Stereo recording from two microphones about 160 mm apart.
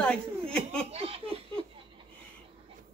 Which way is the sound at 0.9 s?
35° right (ahead or behind).